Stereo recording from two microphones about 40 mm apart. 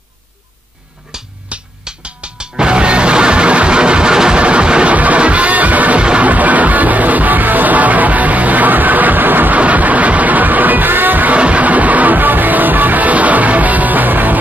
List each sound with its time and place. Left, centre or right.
1.1 s music: centre
1.5 s music: right
4.4 s a sound: right
4.9 s music: right
5.9 s music: right
6.3 s music: right
9.6 s music: right
11.3 s music: right